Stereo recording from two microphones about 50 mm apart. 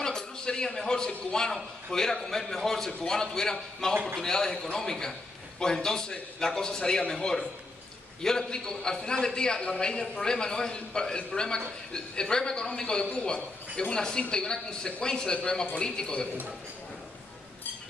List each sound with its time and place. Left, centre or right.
0.0 s a man's voice: centre